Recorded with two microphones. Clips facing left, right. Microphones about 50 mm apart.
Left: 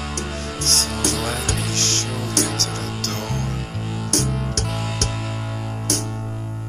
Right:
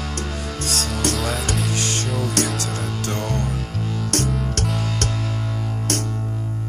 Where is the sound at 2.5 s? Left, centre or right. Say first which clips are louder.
Even; centre.